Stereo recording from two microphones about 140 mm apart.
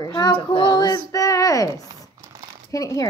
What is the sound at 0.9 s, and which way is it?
A woman's voice, 25° left (ahead or behind).